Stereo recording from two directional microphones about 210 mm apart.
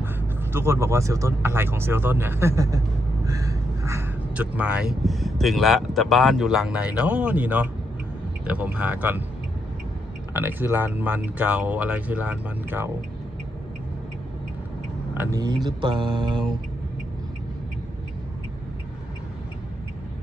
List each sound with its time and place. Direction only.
0.0 s speech: 10° right (ahead or behind)
10.3 s speech: 10° right (ahead or behind)
15.3 s mantra: 20° right (ahead or behind)